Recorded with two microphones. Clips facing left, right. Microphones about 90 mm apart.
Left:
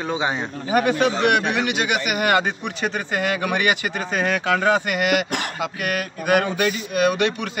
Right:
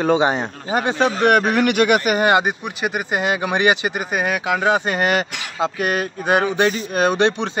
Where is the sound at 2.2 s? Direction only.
20° right (ahead or behind).